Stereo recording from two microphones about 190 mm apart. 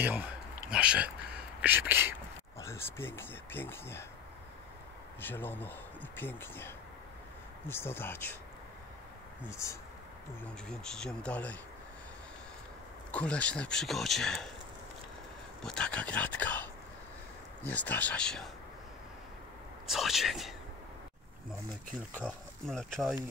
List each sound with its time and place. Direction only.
0.0 s speech: 10° right (ahead or behind)
2.6 s speech: 15° left (ahead or behind)
5.2 s speech: 10° left (ahead or behind)
9.5 s speech: 15° left (ahead or behind)
10.7 s speech: 5° left (ahead or behind)
13.1 s speech: 5° left (ahead or behind)
15.6 s speech: 5° left (ahead or behind)
17.6 s speech: 10° left (ahead or behind)
19.9 s speech: centre (ahead or behind)
22.1 s speech: 5° left (ahead or behind)